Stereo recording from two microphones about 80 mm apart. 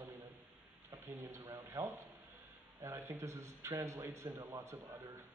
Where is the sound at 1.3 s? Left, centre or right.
Right.